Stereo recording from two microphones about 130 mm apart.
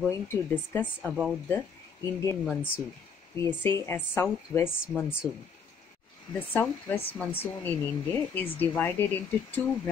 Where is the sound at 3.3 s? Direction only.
15° left (ahead or behind).